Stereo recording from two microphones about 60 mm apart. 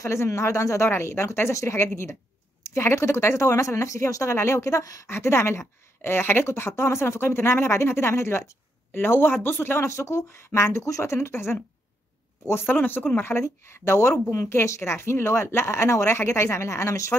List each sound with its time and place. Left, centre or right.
0.0 s speech: left
11.1 s speech: left
12.6 s speech: left